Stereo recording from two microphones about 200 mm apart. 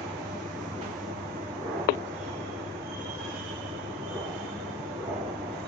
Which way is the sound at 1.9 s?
50° left (ahead or behind).